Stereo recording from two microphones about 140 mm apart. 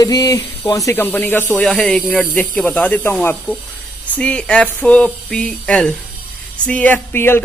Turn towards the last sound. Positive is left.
turn(degrees=15)  # may be behind; listen again after turning